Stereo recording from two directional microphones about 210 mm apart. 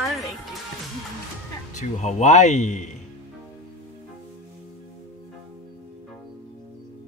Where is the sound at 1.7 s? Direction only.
35° left (ahead or behind).